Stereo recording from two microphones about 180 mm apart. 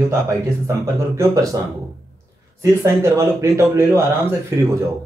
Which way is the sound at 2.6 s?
15° right (ahead or behind).